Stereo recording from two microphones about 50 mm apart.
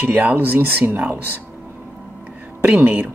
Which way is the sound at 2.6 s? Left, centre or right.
Right.